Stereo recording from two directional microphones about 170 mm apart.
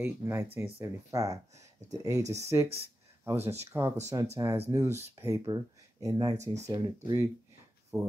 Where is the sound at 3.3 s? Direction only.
40° right (ahead or behind).